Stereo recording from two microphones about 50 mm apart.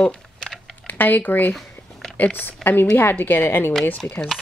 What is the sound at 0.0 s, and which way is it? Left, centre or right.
Typing, centre.